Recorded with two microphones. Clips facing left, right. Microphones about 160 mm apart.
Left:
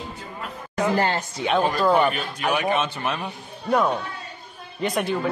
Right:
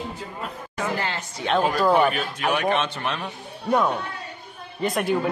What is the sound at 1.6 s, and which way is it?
Speech, 5° right (ahead or behind).